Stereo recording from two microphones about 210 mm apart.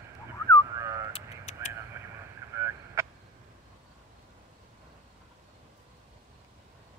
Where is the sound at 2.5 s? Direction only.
15° right (ahead or behind).